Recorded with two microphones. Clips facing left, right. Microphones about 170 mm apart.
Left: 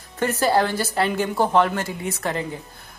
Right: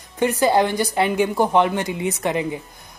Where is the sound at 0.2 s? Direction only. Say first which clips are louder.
Right 3 dB; 15° right (ahead or behind).